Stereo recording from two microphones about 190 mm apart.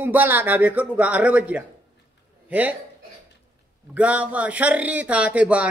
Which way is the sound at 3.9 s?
5° right (ahead or behind).